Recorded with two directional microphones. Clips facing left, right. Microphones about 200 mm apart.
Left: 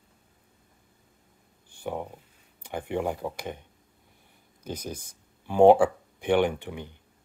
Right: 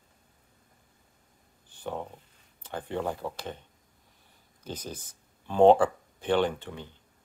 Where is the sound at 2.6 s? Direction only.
15° left (ahead or behind).